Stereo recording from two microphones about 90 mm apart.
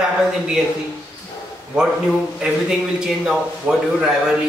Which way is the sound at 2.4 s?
5° right (ahead or behind).